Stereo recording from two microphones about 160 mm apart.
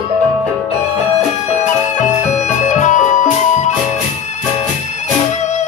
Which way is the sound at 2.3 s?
50° left (ahead or behind).